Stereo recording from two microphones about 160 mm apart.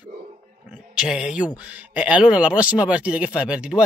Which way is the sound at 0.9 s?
5° right (ahead or behind).